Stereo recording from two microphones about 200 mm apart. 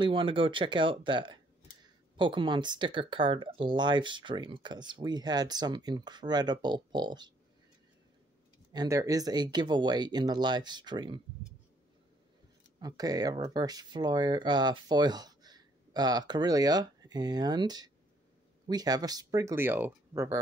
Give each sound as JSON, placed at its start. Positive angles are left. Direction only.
{"t": 0.0, "sound": "speech", "side_deg": -25}
{"t": 8.7, "sound": "speech", "side_deg": -15}
{"t": 12.8, "sound": "speech", "side_deg": -20}